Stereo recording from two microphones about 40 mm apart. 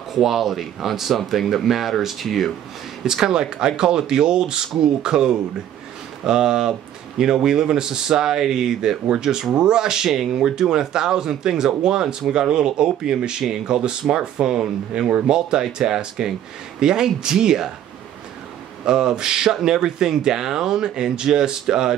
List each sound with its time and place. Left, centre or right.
0.1 s speech: centre
3.0 s speech: centre
18.9 s speech: centre